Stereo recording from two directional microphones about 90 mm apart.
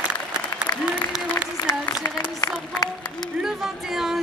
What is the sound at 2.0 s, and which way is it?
Speech, 40° left (ahead or behind).